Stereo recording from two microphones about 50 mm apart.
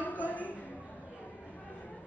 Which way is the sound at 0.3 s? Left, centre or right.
Left.